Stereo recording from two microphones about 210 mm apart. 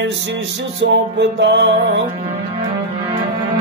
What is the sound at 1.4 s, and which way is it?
Music, 60° right (ahead or behind).